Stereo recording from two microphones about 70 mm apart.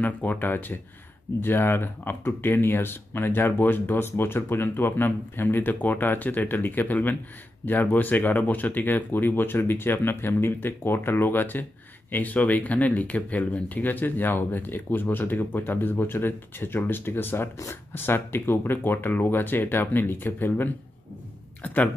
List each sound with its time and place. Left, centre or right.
0.0 s speech: left